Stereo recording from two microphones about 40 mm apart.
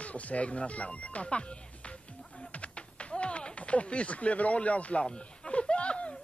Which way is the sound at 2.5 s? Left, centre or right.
Left.